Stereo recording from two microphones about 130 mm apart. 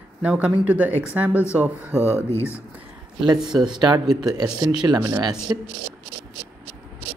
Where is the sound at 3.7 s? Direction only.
35° right (ahead or behind).